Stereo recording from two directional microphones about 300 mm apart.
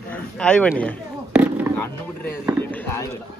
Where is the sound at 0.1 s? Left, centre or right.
Centre.